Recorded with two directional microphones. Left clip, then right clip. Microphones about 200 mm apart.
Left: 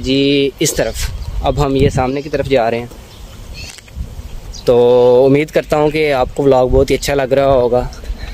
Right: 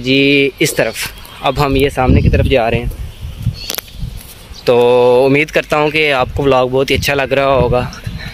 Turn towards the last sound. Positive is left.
turn(degrees=5)  # may be behind; listen again after turning